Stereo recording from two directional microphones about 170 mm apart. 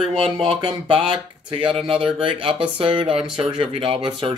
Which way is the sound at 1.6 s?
Centre (ahead or behind).